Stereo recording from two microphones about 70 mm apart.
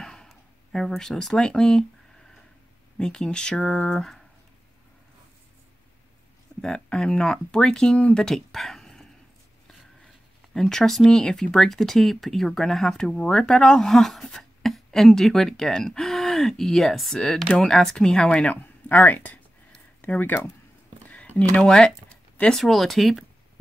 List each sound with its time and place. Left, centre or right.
0.0 s speech: centre
3.0 s speech: centre
6.6 s speech: centre
10.5 s speech: centre; by 20.4 s left
21.1 s a sound: centre
21.5 s speech: centre
22.6 s speech: centre